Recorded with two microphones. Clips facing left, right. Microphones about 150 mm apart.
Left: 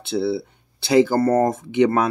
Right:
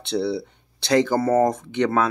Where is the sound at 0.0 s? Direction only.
5° left (ahead or behind).